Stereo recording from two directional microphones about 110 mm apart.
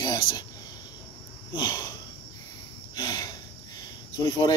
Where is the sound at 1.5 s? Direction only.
40° left (ahead or behind).